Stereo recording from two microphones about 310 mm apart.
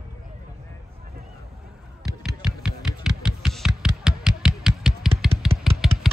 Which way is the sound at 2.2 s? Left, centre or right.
Centre.